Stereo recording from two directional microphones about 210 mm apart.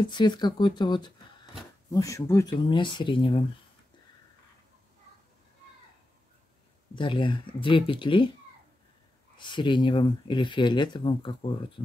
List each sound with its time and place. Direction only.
0.0 s speech: 20° left (ahead or behind)
7.0 s speech: 20° left (ahead or behind)
9.4 s speech: 20° left (ahead or behind)